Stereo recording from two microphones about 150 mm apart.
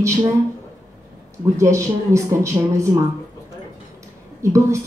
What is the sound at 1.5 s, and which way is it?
A woman's voice, 20° right (ahead or behind).